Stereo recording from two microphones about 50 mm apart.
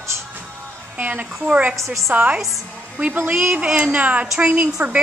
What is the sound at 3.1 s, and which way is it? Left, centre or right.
Speech, right.